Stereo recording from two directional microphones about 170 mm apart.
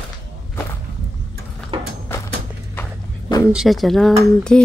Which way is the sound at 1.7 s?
30° right (ahead or behind).